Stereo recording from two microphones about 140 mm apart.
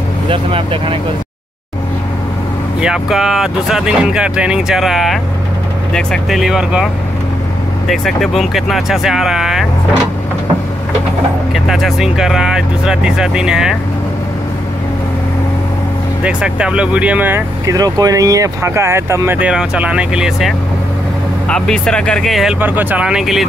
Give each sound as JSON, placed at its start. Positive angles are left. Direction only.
{"t": 0.3, "sound": "speech", "side_deg": -40}
{"t": 2.8, "sound": "speech", "side_deg": -5}
{"t": 7.9, "sound": "speech", "side_deg": 0}
{"t": 11.5, "sound": "speech", "side_deg": 0}
{"t": 16.3, "sound": "speech", "side_deg": -5}
{"t": 17.6, "sound": "speech", "side_deg": -25}
{"t": 22.6, "sound": "speech", "side_deg": -15}